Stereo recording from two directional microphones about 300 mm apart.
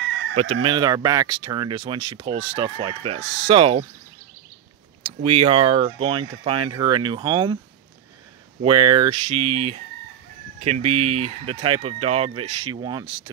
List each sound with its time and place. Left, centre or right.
0.0 s chicken: right
0.6 s speech: centre
5.0 s speech: centre
8.5 s speech: centre